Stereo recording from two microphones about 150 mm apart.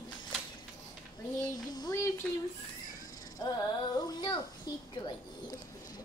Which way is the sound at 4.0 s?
30° left (ahead or behind).